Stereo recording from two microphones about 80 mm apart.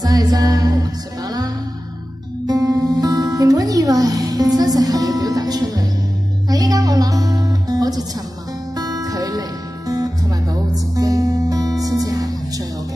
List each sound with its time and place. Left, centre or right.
0.0 s music: right